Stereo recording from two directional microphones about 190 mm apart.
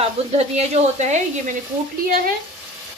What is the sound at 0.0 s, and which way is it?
A woman's voice, 35° right (ahead or behind).